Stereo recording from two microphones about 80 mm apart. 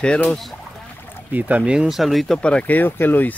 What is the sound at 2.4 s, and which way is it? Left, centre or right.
Speech, centre.